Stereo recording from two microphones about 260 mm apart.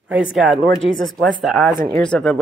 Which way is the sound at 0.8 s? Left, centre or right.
Centre.